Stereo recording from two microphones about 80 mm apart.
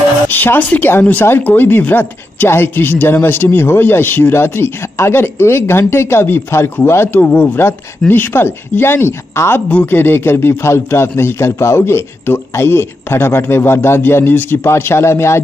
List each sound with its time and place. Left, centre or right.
0.3 s speech: left
9.7 s a man's voice: left